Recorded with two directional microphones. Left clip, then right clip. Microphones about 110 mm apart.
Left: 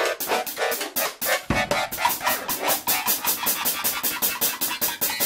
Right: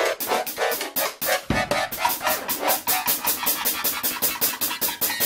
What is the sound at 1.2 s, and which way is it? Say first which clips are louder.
Music: even; 25° right (ahead or behind).